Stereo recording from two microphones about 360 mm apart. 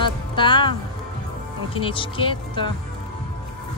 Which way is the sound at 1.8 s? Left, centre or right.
Centre.